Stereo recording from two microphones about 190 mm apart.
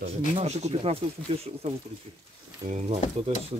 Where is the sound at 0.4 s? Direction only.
35° right (ahead or behind).